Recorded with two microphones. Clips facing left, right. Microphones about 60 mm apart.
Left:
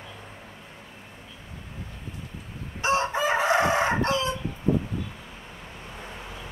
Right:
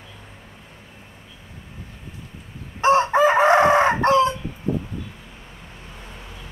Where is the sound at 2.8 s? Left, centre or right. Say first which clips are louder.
Right 8 dB; right.